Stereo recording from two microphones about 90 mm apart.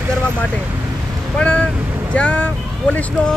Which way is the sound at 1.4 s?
15° left (ahead or behind).